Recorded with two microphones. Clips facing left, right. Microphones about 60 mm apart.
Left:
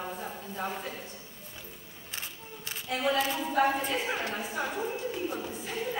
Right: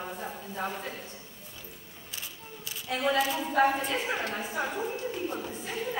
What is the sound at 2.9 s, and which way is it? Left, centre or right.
Speech, centre.